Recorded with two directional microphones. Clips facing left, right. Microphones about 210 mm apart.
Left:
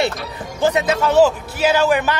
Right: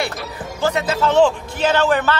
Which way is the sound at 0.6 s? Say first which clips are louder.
Left 2 dB; 20° left (ahead or behind).